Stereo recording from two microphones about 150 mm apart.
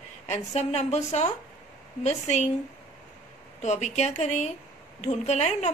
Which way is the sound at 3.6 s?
50° left (ahead or behind).